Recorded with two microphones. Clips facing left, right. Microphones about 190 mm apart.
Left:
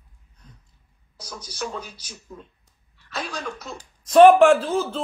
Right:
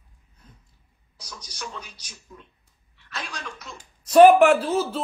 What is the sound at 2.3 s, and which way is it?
Speech, 50° left (ahead or behind).